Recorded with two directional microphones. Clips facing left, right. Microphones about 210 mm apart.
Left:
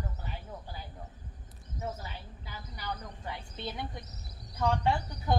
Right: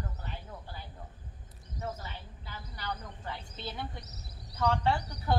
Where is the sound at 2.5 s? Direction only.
10° left (ahead or behind).